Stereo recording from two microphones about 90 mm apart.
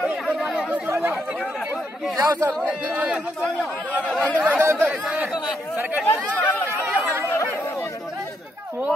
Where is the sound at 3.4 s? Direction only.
15° left (ahead or behind).